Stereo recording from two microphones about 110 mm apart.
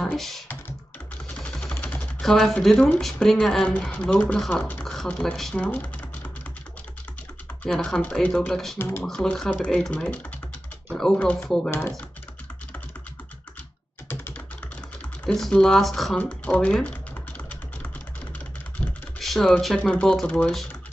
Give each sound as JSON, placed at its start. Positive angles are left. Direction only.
{"t": 0.0, "sound": "speech", "side_deg": 0}
{"t": 1.3, "sound": "a sound", "side_deg": 5}
{"t": 2.0, "sound": "speech", "side_deg": 5}
{"t": 5.7, "sound": "speech", "side_deg": 15}
{"t": 7.6, "sound": "speech", "side_deg": 5}
{"t": 14.0, "sound": "typing", "side_deg": 15}
{"t": 16.2, "sound": "typing", "side_deg": 10}
{"t": 18.8, "sound": "typing", "side_deg": -10}
{"t": 19.1, "sound": "speech", "side_deg": 0}